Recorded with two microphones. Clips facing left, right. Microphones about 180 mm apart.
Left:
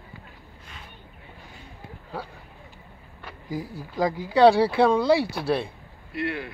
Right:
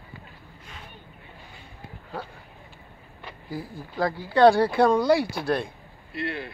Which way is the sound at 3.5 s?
10° left (ahead or behind).